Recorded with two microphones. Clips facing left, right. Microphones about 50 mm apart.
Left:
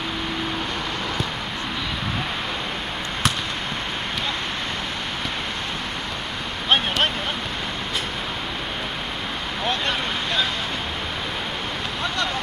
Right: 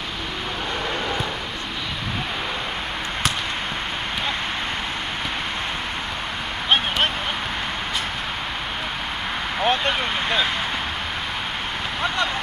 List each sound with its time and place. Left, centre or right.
9.6 s vehicle: right